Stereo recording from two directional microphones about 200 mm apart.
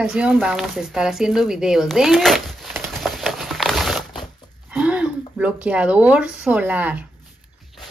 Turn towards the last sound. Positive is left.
turn(degrees=-10)  # may be behind; listen again after turning